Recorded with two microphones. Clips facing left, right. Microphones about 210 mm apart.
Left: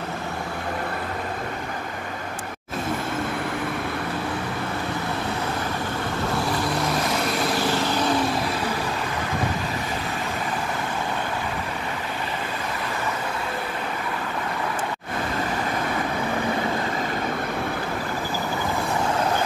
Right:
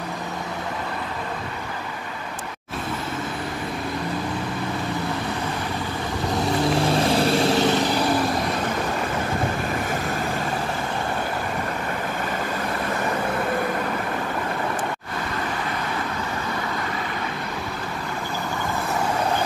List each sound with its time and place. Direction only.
6.9 s vehicle: 30° right (ahead or behind)